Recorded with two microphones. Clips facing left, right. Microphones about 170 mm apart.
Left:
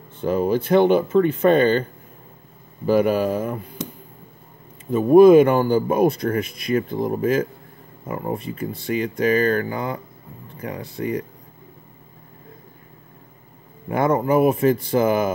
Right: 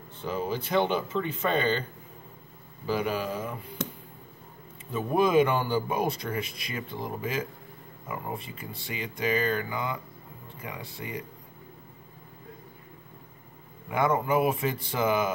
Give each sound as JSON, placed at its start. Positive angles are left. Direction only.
{"t": 0.2, "sound": "speech", "side_deg": 55}
{"t": 2.9, "sound": "speech", "side_deg": 55}
{"t": 4.9, "sound": "speech", "side_deg": 50}
{"t": 13.8, "sound": "speech", "side_deg": 45}